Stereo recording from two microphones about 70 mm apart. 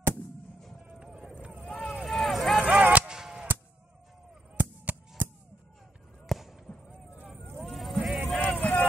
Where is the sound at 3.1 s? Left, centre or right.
Centre.